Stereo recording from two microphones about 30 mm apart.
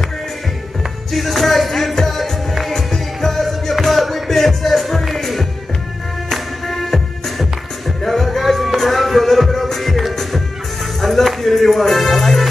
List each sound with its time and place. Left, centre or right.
1.1 s music: centre
2.9 s music: centre